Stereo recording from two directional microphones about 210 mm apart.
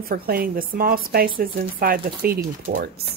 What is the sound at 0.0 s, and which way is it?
Speech, 45° right (ahead or behind).